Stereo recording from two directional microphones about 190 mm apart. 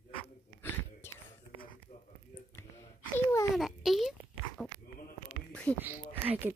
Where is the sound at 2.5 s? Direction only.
10° left (ahead or behind).